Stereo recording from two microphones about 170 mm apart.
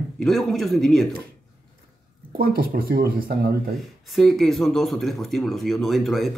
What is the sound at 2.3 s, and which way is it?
Speech, 60° right (ahead or behind).